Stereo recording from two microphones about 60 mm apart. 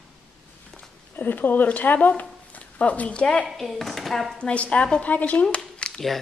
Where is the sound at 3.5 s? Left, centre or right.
Centre.